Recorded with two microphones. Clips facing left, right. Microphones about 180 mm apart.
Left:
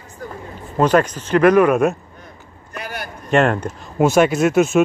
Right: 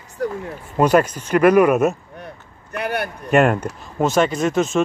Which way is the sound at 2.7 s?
60° right (ahead or behind).